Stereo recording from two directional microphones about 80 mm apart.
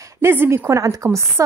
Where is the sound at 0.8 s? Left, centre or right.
Right.